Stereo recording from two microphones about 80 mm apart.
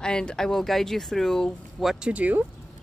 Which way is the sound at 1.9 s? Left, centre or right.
Centre.